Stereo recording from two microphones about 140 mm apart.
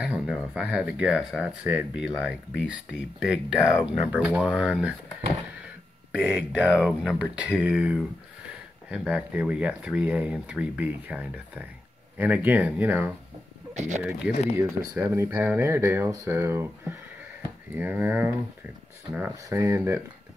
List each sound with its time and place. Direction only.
0.0 s speech: 5° right (ahead or behind)
6.2 s speech: 10° right (ahead or behind)
13.7 s speech: 55° right (ahead or behind)
14.3 s speech: 55° left (ahead or behind)
14.6 s speech: 25° right (ahead or behind)